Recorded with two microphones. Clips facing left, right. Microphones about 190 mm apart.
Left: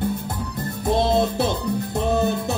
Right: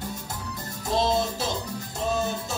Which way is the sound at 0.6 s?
60° left (ahead or behind).